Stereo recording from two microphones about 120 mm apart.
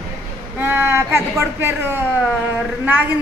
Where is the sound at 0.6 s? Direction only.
20° right (ahead or behind).